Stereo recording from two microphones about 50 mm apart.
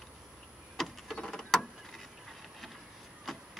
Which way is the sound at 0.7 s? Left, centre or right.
Centre.